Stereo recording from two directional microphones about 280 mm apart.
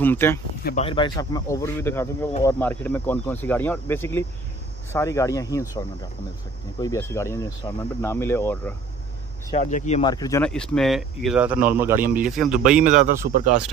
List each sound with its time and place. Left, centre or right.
0.0 s speech: centre
0.7 s speech: left
9.5 s speech: left; by 12.5 s centre
12.8 s a man's voice: right